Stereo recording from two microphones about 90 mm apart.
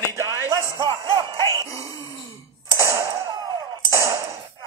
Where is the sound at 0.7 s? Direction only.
35° right (ahead or behind).